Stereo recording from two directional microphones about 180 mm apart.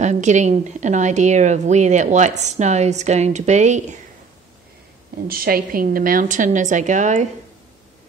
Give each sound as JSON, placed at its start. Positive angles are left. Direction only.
{"t": 0.0, "sound": "a woman's voice", "side_deg": -40}
{"t": 5.3, "sound": "a woman's voice", "side_deg": -55}